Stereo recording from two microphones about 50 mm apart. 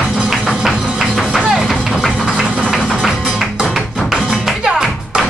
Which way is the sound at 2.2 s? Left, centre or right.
Centre.